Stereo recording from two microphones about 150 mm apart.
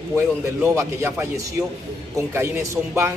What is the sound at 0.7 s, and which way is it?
A man's voice, 20° right (ahead or behind).